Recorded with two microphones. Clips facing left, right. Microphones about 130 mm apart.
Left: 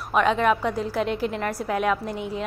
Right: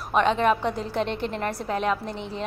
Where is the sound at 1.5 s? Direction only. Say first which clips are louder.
Left 2 dB; 25° right (ahead or behind).